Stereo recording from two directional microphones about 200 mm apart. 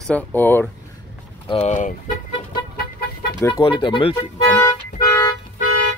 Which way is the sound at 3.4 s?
20° left (ahead or behind).